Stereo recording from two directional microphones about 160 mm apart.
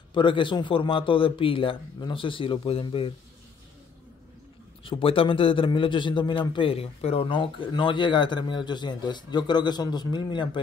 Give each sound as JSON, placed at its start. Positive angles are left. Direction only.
{"t": 0.1, "sound": "a man's voice", "side_deg": 30}
{"t": 4.8, "sound": "a man's voice", "side_deg": 35}